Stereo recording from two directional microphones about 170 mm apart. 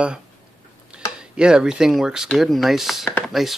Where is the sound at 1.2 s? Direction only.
5° right (ahead or behind).